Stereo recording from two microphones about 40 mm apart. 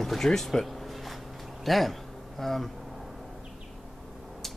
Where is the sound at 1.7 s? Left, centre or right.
Centre.